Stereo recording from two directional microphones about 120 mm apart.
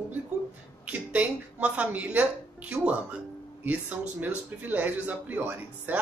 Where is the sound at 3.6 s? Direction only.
15° right (ahead or behind).